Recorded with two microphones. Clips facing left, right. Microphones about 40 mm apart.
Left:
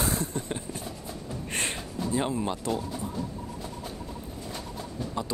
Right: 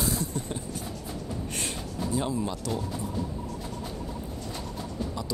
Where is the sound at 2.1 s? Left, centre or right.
Left.